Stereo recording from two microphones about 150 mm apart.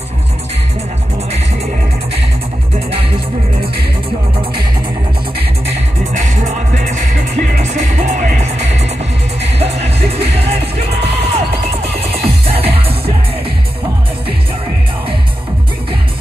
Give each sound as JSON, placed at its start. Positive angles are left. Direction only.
{"t": 6.1, "sound": "music", "side_deg": -55}
{"t": 12.5, "sound": "music", "side_deg": -40}